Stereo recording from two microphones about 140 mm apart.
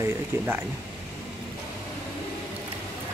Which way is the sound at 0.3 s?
20° right (ahead or behind).